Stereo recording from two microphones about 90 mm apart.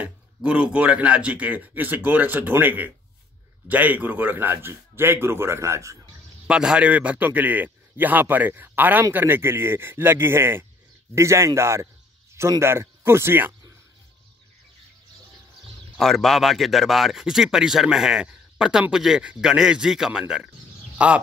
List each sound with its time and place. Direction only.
0.0 s a man's voice: 15° right (ahead or behind); by 5.9 s 35° right (ahead or behind)
6.4 s a man's voice: 10° right (ahead or behind); by 13.6 s 25° right (ahead or behind)
16.0 s speech: 5° left (ahead or behind); by 21.1 s 15° right (ahead or behind)